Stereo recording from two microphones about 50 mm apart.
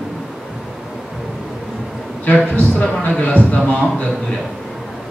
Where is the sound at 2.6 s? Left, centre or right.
Left.